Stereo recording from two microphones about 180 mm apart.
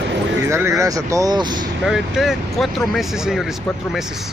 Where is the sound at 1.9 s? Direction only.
Centre (ahead or behind).